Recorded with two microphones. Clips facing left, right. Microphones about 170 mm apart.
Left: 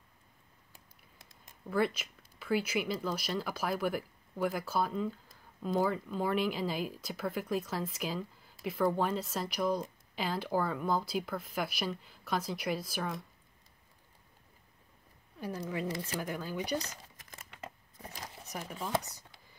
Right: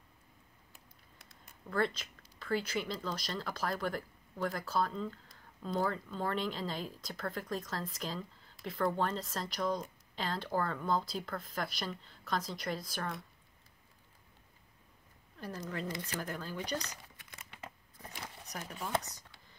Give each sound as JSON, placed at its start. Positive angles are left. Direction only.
{"t": 1.7, "sound": "speech", "side_deg": 10}
{"t": 15.3, "sound": "speech", "side_deg": 10}
{"t": 16.8, "sound": "crumpling", "side_deg": 40}
{"t": 18.4, "sound": "speech", "side_deg": 5}